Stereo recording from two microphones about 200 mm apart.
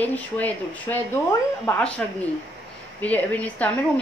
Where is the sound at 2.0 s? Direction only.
5° left (ahead or behind).